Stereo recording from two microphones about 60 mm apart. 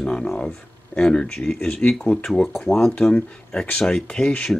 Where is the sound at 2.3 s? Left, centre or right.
Centre.